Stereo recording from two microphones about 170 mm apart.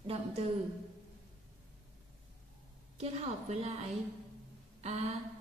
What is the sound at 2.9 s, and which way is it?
A woman's voice, 40° right (ahead or behind).